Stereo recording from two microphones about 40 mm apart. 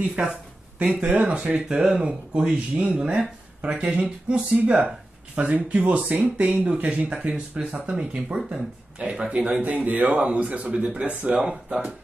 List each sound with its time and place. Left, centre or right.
0.2 s speech: right
0.7 s speech: right
1.7 s speech: centre; by 6.7 s right
7.1 s speech: right
11.3 s speech: right